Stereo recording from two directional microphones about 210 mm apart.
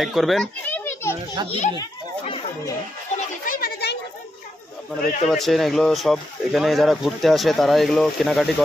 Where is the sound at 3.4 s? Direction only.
45° left (ahead or behind).